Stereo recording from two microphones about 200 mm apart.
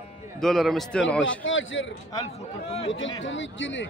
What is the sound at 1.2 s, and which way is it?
Speech, 75° left (ahead or behind).